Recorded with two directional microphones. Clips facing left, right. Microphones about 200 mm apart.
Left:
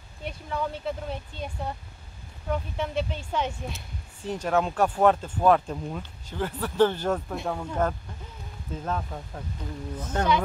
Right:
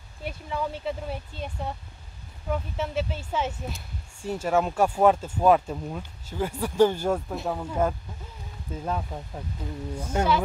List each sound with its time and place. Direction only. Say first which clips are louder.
0.2 s speech: even; 5° right (ahead or behind)